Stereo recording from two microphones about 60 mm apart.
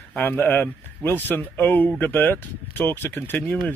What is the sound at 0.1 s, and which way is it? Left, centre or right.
Speech, left.